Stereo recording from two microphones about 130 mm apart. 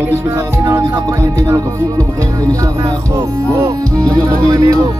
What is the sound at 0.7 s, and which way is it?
Music, 25° right (ahead or behind).